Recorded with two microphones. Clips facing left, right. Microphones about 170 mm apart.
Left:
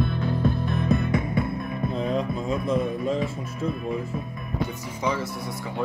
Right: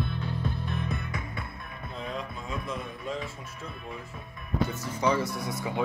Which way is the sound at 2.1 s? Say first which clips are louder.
Left 8 dB; 25° left (ahead or behind).